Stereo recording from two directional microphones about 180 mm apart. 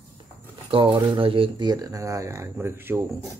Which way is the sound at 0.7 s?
30° right (ahead or behind).